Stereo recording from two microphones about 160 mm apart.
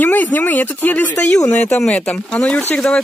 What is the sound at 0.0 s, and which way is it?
Speech, 10° left (ahead or behind).